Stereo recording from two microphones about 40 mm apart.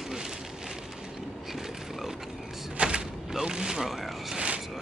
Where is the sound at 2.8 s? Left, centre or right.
Right.